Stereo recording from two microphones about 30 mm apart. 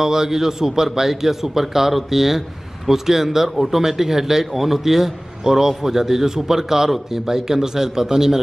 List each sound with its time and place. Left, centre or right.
0.0 s a man's voice: centre